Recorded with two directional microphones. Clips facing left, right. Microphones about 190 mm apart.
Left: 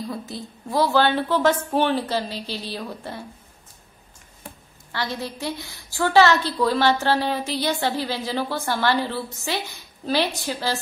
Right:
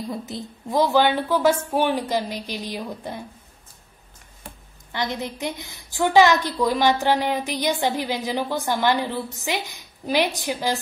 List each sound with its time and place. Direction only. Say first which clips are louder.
0.1 s a woman's voice: right 1 dB; 20° right (ahead or behind)
4.9 s a woman's voice: right 1 dB; 20° right (ahead or behind)